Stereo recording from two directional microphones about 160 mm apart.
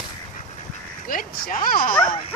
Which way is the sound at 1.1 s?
60° left (ahead or behind).